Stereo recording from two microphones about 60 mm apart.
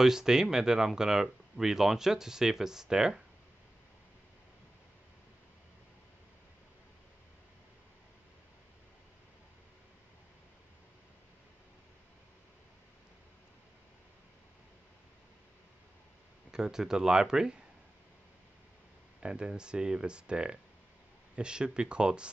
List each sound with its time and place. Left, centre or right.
0.0 s speech: centre
16.5 s speech: centre
19.2 s speech: centre